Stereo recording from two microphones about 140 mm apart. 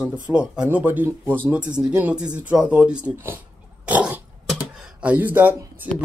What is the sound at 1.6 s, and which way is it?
Speech, 30° right (ahead or behind).